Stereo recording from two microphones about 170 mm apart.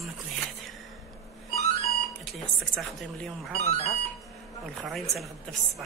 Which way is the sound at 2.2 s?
5° left (ahead or behind).